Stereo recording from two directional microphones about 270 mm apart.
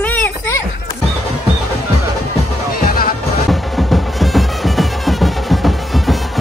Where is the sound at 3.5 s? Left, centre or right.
Centre.